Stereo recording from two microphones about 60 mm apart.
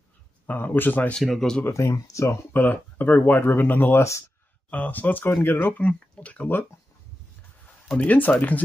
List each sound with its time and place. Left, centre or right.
0.5 s speech: left
1.2 s speech: centre
1.7 s speech: left
2.5 s speech: left
5.8 s speech: left
8.0 s speech: left